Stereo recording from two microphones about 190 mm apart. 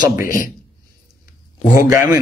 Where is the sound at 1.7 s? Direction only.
15° right (ahead or behind).